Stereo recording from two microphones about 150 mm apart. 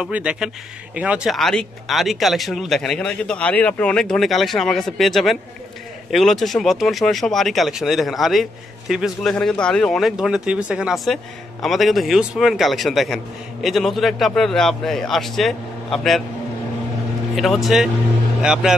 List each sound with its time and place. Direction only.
0.0 s speech: 5° right (ahead or behind)
17.4 s speech: centre (ahead or behind)